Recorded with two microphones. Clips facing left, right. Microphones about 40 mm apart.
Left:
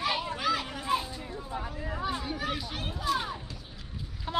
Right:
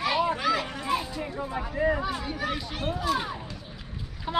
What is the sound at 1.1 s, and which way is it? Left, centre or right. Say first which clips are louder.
Speech: right 5 dB; right.